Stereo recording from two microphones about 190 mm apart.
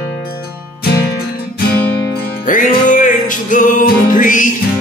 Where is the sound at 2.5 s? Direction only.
45° left (ahead or behind).